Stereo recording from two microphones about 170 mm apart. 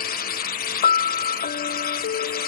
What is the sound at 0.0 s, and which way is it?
Music, 60° left (ahead or behind).